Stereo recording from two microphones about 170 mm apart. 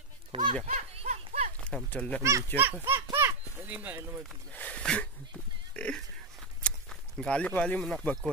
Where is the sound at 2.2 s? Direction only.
15° right (ahead or behind).